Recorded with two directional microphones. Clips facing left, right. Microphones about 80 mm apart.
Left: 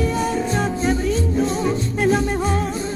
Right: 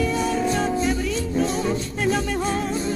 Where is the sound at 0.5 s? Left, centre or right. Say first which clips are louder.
Left 2 dB; left.